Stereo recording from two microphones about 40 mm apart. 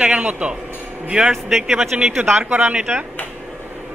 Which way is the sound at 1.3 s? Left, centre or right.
Centre.